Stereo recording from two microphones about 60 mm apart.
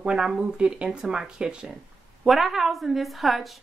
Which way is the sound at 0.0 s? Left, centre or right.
Centre.